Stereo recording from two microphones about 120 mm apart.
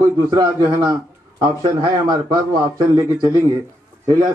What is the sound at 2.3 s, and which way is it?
Speech, 35° right (ahead or behind).